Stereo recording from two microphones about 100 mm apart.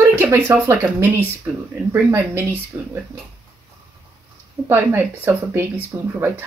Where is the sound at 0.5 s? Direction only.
20° right (ahead or behind).